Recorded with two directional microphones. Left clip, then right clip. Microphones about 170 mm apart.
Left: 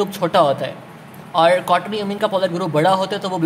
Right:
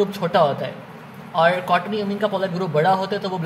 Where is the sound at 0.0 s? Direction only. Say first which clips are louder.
Left 2 dB; 25° left (ahead or behind).